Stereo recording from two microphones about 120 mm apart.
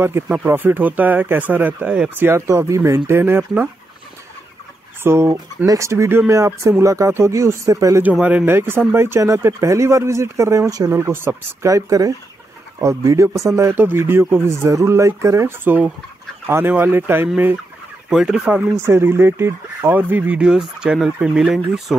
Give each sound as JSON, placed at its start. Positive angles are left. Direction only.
{"t": 0.0, "sound": "speech", "side_deg": -15}
{"t": 5.0, "sound": "speech", "side_deg": -20}
{"t": 8.0, "sound": "speech", "side_deg": -15}
{"t": 18.1, "sound": "speech", "side_deg": -5}